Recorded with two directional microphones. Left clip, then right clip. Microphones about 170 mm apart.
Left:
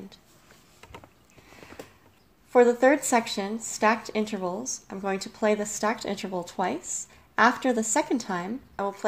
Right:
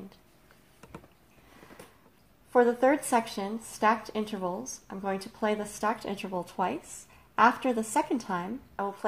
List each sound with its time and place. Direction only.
2.5 s speech: 30° left (ahead or behind)